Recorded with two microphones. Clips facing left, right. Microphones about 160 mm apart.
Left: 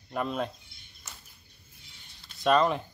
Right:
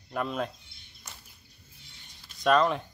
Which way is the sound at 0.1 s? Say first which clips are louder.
Even; centre (ahead or behind).